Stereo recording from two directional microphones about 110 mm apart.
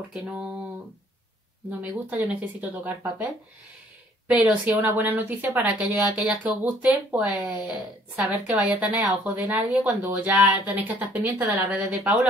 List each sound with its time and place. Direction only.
0.1 s a woman's voice: 10° right (ahead or behind)
1.7 s a woman's voice: 15° right (ahead or behind)
4.3 s a woman's voice: 15° right (ahead or behind)